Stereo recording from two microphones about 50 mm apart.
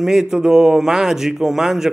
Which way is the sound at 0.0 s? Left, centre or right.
Centre.